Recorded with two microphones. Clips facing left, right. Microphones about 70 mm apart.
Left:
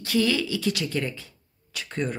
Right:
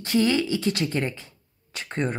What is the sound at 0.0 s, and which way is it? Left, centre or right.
A woman's voice, right.